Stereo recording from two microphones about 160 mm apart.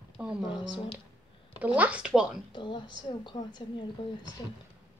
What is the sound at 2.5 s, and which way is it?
A woman's voice, 30° left (ahead or behind).